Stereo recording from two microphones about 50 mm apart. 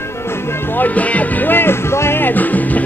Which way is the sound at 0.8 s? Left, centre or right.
Left.